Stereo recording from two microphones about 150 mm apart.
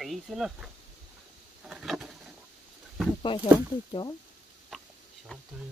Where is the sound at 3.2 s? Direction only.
35° left (ahead or behind).